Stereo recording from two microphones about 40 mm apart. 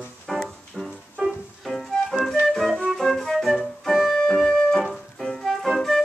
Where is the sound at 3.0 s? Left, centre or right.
Centre.